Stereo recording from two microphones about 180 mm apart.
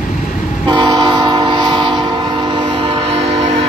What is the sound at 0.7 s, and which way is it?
Train, 25° right (ahead or behind).